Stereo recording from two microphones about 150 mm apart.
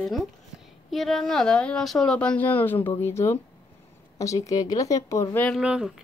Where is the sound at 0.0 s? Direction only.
Centre (ahead or behind).